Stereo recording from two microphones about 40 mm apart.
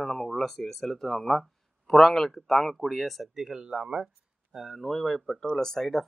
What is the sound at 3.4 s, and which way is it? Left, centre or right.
Speech, centre.